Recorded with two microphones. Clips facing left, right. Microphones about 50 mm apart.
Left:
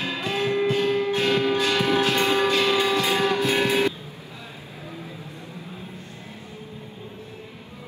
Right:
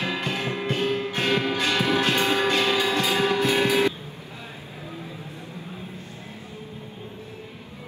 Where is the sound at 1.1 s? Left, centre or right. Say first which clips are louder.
Left 2 dB; right.